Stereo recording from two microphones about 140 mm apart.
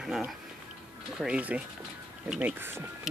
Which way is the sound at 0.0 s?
5° right (ahead or behind).